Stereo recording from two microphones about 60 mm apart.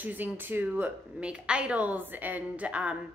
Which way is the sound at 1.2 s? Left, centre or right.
Centre.